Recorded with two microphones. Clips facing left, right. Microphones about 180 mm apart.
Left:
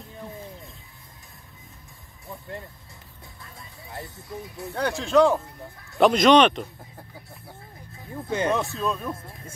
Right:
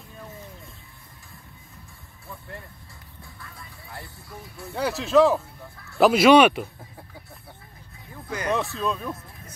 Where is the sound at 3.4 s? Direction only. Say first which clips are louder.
Left 1 dB; 20° left (ahead or behind).